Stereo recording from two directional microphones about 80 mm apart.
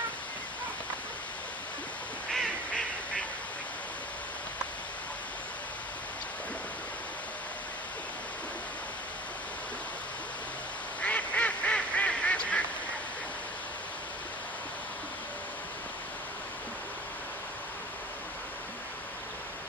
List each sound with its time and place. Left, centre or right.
11.0 s goose: centre